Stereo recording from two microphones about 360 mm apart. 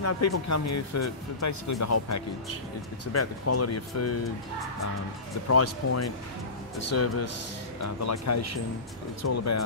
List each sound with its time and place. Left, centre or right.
0.0 s speech: left
5.5 s speech: left